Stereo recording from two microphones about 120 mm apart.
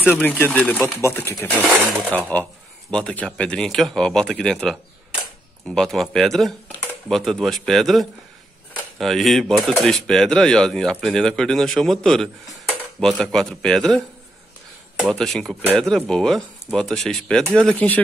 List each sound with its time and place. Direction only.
0.2 s speech: 15° left (ahead or behind)
1.7 s speech: 10° left (ahead or behind)
5.8 s speech: centre (ahead or behind)